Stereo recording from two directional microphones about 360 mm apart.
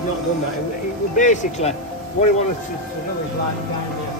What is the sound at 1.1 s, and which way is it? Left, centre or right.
Speech, left.